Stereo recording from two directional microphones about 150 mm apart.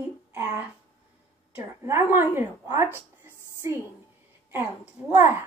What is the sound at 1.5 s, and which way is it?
A woman's voice, 15° right (ahead or behind).